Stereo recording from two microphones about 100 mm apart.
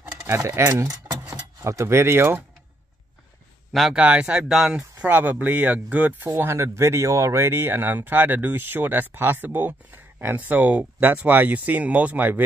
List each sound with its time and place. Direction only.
0.2 s speech: 30° right (ahead or behind)
3.7 s speech: centre (ahead or behind)
5.0 s speech: 20° right (ahead or behind)
6.2 s speech: 30° right (ahead or behind)